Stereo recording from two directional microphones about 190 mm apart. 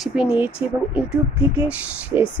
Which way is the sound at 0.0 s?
5° right (ahead or behind).